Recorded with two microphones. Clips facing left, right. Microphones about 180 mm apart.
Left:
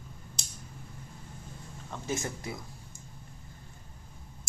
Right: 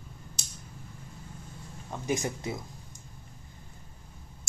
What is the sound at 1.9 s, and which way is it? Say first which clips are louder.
Speech: right 4 dB; 15° right (ahead or behind).